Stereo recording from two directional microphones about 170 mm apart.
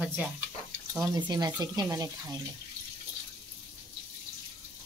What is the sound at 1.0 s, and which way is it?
Speech, 25° right (ahead or behind).